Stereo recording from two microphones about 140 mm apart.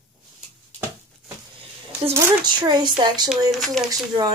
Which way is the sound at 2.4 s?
30° right (ahead or behind).